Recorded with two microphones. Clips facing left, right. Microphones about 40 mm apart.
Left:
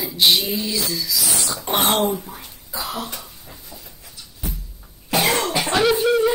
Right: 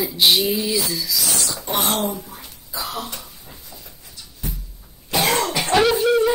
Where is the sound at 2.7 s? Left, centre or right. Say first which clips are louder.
Left 1 dB; left.